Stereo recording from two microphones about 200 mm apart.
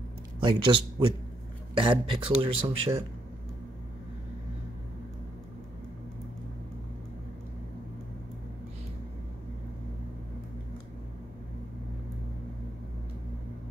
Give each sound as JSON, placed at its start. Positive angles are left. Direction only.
{"t": 0.4, "sound": "speech", "side_deg": -25}